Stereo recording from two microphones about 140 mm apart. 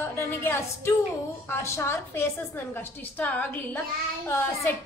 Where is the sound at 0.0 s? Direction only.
15° left (ahead or behind).